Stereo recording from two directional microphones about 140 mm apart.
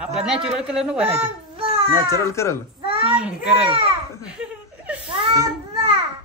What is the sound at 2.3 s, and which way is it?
Speech, 20° left (ahead or behind).